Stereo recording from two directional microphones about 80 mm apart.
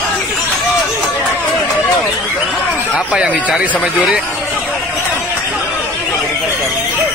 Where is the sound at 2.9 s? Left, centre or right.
Centre.